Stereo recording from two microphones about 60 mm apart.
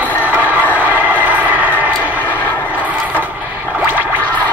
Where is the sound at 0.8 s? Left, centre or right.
Right.